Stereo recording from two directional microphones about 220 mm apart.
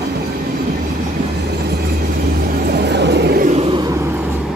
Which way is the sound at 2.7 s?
50° right (ahead or behind).